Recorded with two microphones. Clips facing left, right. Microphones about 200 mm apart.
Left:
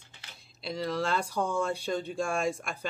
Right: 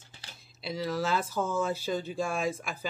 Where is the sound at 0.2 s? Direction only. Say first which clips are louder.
Right 1 dB; 35° right (ahead or behind).